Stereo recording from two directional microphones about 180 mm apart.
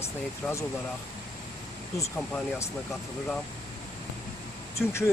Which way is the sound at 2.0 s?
15° left (ahead or behind).